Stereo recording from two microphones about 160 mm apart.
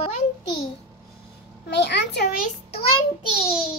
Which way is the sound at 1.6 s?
90° left.